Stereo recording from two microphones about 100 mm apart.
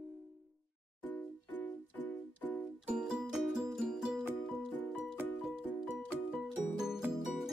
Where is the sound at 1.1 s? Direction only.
20° left (ahead or behind).